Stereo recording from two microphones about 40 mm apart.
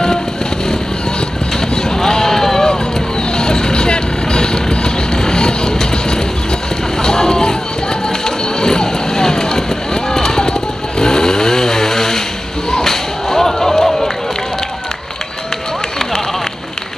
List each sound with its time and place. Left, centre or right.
1.8 s a sound: centre
3.3 s vehicle: centre
7.0 s a sound: centre
8.5 s vehicle: centre
11.0 s chainsaw: centre
12.7 s music: centre